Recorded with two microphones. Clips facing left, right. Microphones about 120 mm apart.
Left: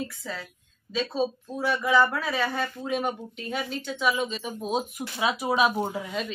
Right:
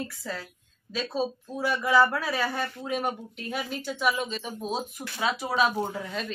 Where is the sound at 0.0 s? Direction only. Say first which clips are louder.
Even; 5° right (ahead or behind).